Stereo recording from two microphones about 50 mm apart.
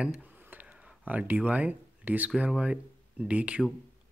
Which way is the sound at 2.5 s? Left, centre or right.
Right.